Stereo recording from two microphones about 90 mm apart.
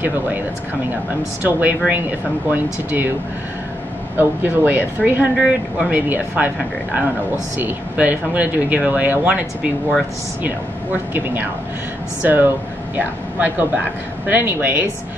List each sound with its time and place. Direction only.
1.4 s speech: 20° right (ahead or behind)
4.2 s speech: 20° right (ahead or behind)
5.3 s speech: centre (ahead or behind)
5.9 s speech: 15° right (ahead or behind)
12.2 s speech: 20° right (ahead or behind)